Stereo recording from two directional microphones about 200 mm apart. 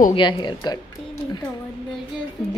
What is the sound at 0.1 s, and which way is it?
Speech, 25° left (ahead or behind).